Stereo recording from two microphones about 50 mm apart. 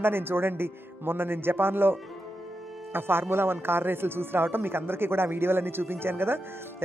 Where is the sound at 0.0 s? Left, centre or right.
Right.